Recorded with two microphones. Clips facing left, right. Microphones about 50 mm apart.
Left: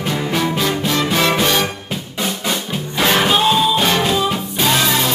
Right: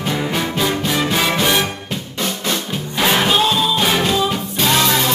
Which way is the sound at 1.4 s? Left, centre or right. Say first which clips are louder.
Even; centre.